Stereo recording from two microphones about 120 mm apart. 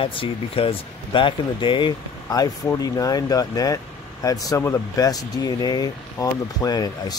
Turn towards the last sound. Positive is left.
turn(degrees=30)  # may be behind; listen again after turning